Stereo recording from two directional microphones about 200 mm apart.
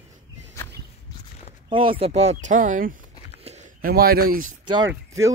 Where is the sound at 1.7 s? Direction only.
25° right (ahead or behind); by 4.6 s 45° right (ahead or behind).